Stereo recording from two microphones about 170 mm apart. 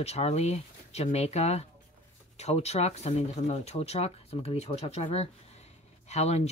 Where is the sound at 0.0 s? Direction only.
40° left (ahead or behind).